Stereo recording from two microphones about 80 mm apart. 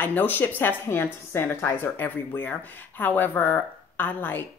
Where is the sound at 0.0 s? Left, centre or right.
Left.